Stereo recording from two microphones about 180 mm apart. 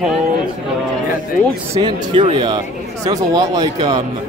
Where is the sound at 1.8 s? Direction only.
25° right (ahead or behind).